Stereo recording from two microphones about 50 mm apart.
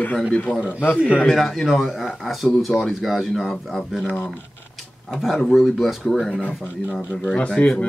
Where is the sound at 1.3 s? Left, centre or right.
Centre.